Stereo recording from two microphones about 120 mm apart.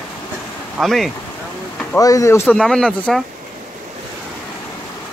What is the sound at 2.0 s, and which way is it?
Speech, 25° left (ahead or behind).